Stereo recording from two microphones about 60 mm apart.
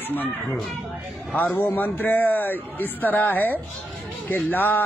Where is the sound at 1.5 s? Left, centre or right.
Left.